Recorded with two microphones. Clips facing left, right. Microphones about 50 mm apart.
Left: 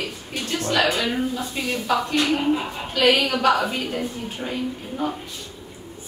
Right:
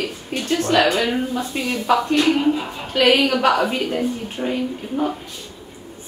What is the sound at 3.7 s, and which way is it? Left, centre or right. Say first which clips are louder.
A woman's voice: right 5 dB; right.